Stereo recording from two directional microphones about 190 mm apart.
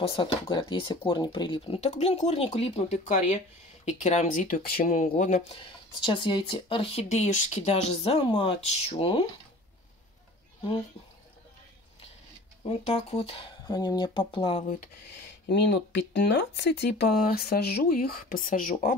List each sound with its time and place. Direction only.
0.0 s speech: 30° left (ahead or behind); by 5.4 s 45° left (ahead or behind)
5.5 s speech: 25° left (ahead or behind)
12.6 s speech: 30° left (ahead or behind)
15.4 s speech: 60° left (ahead or behind)